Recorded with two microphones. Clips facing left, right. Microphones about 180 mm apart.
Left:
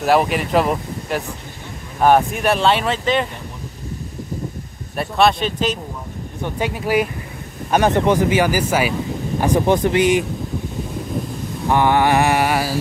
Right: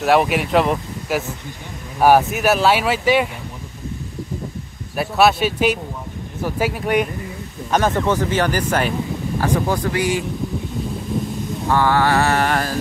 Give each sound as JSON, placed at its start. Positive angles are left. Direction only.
{"t": 0.0, "sound": "speech", "side_deg": 0}
{"t": 4.9, "sound": "speech", "side_deg": -5}
{"t": 7.7, "sound": "speech", "side_deg": 15}
{"t": 9.4, "sound": "speech", "side_deg": 20}
{"t": 11.7, "sound": "speech", "side_deg": 20}